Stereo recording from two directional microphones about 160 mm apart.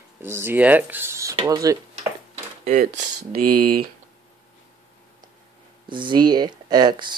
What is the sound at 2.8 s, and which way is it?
Speech, 65° right (ahead or behind).